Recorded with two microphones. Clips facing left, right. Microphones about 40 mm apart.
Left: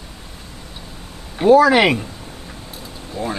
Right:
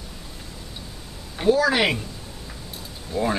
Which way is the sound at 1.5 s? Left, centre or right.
Left.